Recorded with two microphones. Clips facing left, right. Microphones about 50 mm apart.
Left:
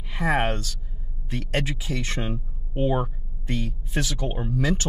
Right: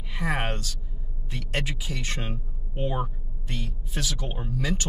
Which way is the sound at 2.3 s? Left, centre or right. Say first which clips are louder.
Left 6 dB; centre.